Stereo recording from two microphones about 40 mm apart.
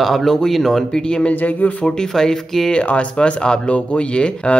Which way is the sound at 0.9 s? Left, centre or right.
Left.